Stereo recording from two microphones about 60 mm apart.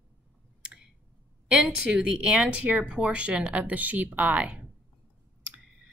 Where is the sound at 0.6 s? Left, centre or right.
Centre.